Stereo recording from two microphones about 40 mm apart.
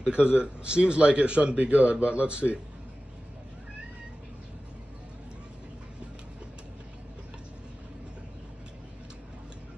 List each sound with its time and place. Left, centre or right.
0.0 s a man's voice: right